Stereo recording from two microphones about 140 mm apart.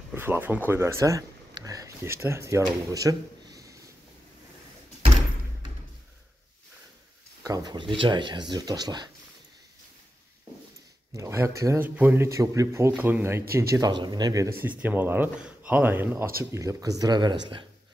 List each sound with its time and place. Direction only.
0.1 s speech: 15° right (ahead or behind)
2.9 s a sound: 25° right (ahead or behind)
7.4 s speech: 30° right (ahead or behind)
11.1 s speech: 20° right (ahead or behind)
14.6 s speech: 10° right (ahead or behind); by 17.6 s 35° right (ahead or behind)